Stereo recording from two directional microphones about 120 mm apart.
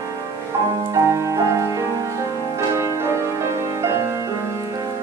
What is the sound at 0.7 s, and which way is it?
Music, 35° right (ahead or behind).